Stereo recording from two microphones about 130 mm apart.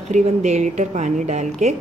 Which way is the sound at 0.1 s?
60° right (ahead or behind).